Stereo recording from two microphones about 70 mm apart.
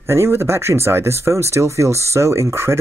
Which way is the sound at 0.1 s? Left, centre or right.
Right.